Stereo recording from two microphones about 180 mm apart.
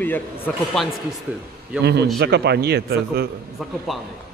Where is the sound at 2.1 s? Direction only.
65° right (ahead or behind).